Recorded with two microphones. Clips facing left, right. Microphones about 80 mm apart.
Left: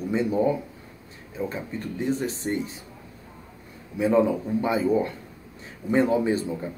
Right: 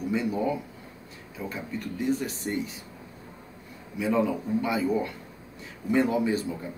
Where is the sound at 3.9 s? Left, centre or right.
Left.